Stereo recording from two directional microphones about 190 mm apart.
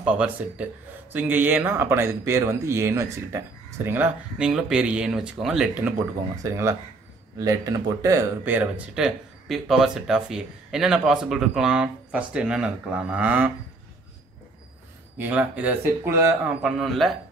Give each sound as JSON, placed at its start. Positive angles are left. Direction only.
{"t": 0.0, "sound": "speech", "side_deg": -5}
{"t": 6.3, "sound": "speech", "side_deg": -15}
{"t": 15.1, "sound": "speech", "side_deg": -10}